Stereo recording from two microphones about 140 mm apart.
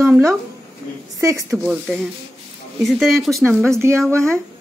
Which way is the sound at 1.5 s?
5° right (ahead or behind).